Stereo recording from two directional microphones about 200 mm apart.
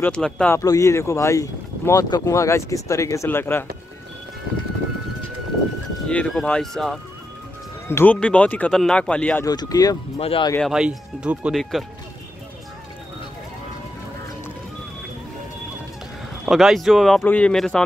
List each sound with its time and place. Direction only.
0.0 s speech: 5° left (ahead or behind)
6.0 s speech: 5° left (ahead or behind)
9.5 s speech: 20° left (ahead or behind)
10.1 s speech: 30° left (ahead or behind)
10.7 s speech: 5° right (ahead or behind)
16.4 s speech: centre (ahead or behind)